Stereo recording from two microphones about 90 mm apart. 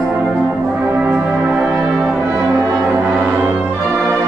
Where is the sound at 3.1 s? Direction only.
20° right (ahead or behind).